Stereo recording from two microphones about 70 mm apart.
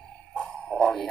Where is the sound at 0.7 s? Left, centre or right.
Centre.